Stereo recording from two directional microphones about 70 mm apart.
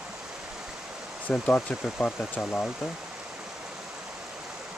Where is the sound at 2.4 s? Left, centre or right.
Centre.